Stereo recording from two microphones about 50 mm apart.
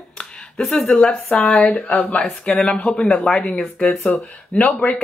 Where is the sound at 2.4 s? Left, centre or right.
Centre.